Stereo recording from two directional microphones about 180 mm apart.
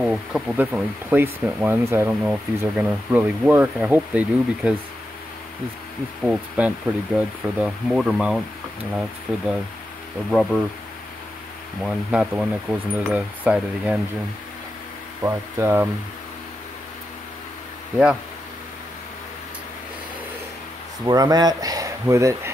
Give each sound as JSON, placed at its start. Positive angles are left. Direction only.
{"t": 0.0, "sound": "speech", "side_deg": -5}
{"t": 6.2, "sound": "speech", "side_deg": -5}
{"t": 10.3, "sound": "speech", "side_deg": 0}
{"t": 11.8, "sound": "speech", "side_deg": -5}
{"t": 15.2, "sound": "speech", "side_deg": -15}
{"t": 21.0, "sound": "speech", "side_deg": -20}